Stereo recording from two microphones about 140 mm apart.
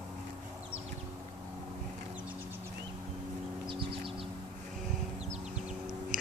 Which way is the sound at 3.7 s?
35° right (ahead or behind).